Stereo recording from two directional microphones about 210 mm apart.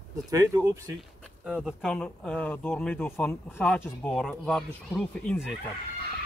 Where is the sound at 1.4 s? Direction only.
5° right (ahead or behind).